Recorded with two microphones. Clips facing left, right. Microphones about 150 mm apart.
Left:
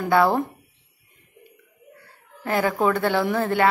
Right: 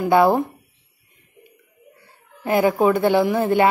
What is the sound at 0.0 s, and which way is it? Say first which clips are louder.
Speech: right 3 dB; 15° right (ahead or behind).